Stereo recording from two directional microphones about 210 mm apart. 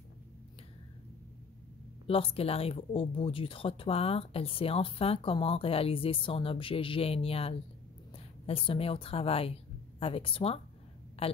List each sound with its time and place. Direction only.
2.0 s speech: 25° left (ahead or behind)